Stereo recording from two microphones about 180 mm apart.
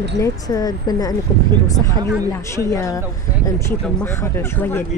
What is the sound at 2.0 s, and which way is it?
Speech, 20° right (ahead or behind).